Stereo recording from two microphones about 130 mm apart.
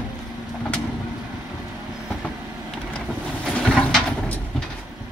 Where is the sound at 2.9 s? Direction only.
10° left (ahead or behind).